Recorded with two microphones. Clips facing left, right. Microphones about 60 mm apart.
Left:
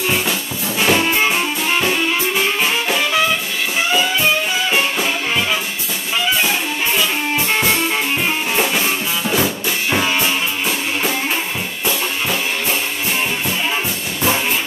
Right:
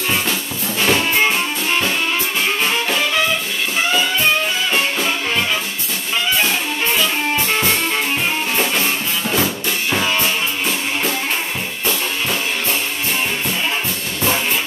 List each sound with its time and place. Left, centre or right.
0.1 s music: centre
4.7 s music: centre
6.4 s music: centre